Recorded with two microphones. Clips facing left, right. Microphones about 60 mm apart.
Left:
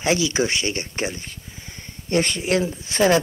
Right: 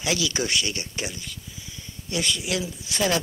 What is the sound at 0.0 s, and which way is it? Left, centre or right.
A man's voice, left.